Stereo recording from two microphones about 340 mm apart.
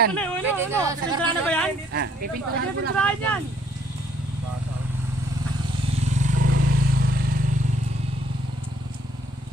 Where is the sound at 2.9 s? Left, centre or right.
Centre.